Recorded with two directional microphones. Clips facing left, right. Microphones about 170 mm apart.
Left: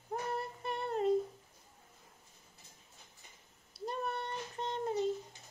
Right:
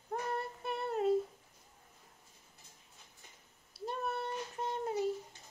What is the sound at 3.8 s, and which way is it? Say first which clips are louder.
Child singing: right 1 dB; 5° right (ahead or behind).